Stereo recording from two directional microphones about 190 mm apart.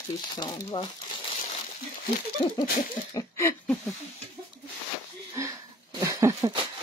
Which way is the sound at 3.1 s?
15° left (ahead or behind).